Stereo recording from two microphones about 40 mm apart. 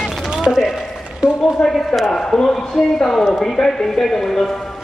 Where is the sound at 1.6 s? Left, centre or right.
Centre.